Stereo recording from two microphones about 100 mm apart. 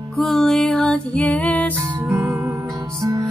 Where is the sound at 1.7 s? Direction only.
20° right (ahead or behind).